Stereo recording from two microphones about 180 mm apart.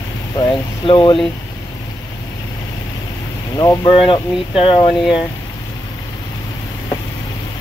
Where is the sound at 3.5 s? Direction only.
20° left (ahead or behind).